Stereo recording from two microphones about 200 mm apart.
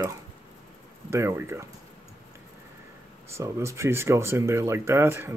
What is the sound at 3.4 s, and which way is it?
Speech, 15° right (ahead or behind).